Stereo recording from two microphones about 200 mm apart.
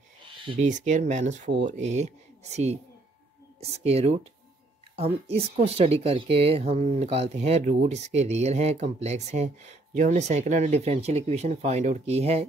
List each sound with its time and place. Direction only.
0.5 s speech: 35° right (ahead or behind)